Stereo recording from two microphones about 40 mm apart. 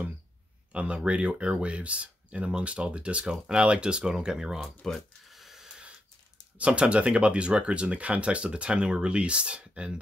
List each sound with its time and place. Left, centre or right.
0.7 s speech: right
5.3 s a sound: centre
6.6 s speech: right